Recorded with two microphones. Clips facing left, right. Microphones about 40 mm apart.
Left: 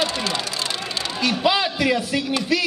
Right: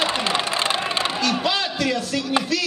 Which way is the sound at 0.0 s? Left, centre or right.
Right.